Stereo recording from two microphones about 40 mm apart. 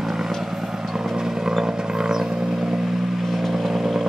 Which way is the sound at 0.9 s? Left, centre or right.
Centre.